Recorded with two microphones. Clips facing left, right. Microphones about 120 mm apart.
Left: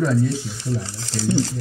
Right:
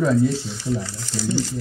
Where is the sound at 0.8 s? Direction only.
30° left (ahead or behind).